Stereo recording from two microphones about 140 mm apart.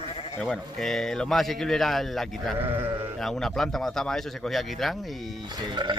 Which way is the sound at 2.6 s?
15° right (ahead or behind).